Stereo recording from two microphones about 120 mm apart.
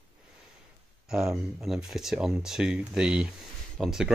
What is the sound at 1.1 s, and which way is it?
Speech, centre (ahead or behind).